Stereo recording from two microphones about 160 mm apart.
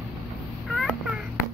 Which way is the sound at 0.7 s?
Centre (ahead or behind).